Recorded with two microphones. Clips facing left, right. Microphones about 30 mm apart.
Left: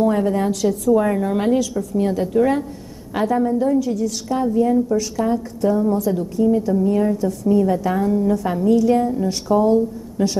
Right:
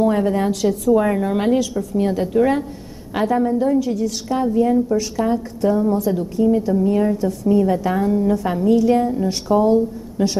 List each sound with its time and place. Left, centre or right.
0.0 s a woman's voice: right